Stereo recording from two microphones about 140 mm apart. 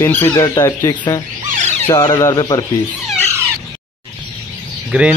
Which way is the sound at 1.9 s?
25° left (ahead or behind).